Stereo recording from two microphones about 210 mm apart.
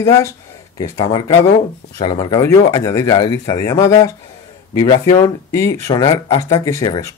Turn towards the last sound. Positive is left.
turn(degrees=15)  # may be behind; listen again after turning